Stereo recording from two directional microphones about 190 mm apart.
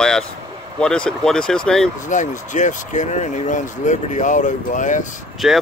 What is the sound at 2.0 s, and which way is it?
Speech, 40° left (ahead or behind).